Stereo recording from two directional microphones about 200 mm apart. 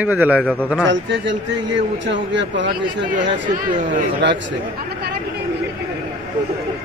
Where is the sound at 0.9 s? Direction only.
65° right (ahead or behind).